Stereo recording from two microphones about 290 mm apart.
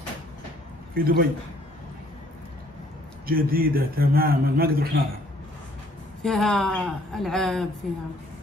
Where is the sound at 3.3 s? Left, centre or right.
Right.